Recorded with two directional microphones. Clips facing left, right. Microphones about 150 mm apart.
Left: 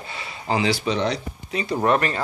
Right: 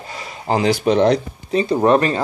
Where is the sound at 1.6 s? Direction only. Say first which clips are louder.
Right 5 dB; 25° right (ahead or behind).